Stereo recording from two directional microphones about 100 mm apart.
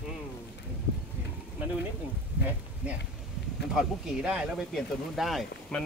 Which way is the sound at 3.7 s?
5° right (ahead or behind).